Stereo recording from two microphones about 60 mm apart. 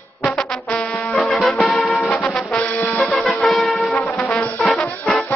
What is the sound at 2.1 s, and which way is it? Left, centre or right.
Brass instrument, centre.